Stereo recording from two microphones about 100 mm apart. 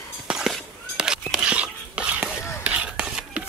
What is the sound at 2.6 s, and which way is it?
Whispering, 10° right (ahead or behind).